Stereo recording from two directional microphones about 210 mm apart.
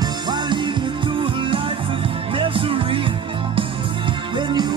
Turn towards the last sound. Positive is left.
turn(degrees=-20)  # may be behind; listen again after turning